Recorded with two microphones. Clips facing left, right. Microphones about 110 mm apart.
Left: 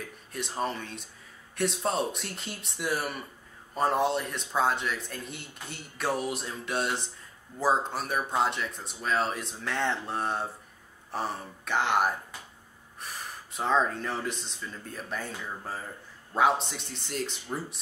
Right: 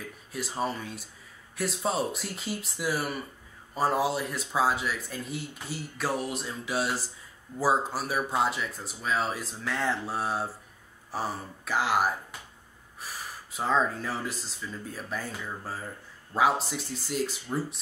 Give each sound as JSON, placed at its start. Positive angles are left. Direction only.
{"t": 0.3, "sound": "speech", "side_deg": -5}